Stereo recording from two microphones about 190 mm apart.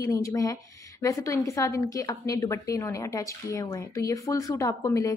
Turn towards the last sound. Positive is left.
turn(degrees=15)  # may be behind; listen again after turning